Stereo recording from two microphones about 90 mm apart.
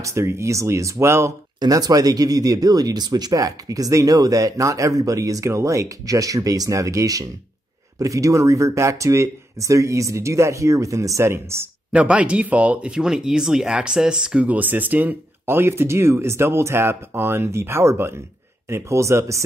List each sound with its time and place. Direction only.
0.0 s speech: 35° right (ahead or behind)
1.6 s speech: 45° right (ahead or behind); by 11.7 s 30° right (ahead or behind)
11.9 s speech: 15° right (ahead or behind); by 19.4 s 35° right (ahead or behind)